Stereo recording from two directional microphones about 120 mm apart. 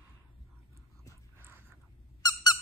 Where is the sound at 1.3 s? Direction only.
20° right (ahead or behind).